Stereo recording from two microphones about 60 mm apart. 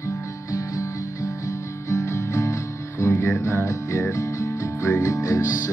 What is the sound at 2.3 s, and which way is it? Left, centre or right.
Music, left.